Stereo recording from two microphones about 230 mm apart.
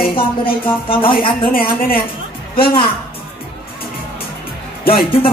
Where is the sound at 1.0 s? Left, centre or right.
Left.